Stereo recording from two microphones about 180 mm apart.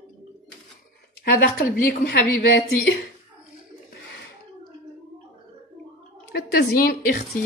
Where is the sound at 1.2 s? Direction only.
60° left (ahead or behind).